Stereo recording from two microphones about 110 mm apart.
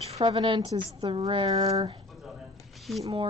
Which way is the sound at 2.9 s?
Centre (ahead or behind).